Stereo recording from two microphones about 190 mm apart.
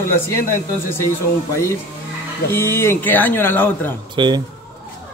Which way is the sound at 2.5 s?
10° left (ahead or behind).